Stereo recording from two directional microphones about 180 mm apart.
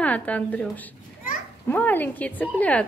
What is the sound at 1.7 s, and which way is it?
Speech, 10° left (ahead or behind).